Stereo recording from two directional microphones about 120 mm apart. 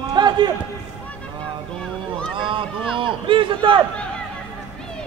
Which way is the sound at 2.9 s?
45° right (ahead or behind).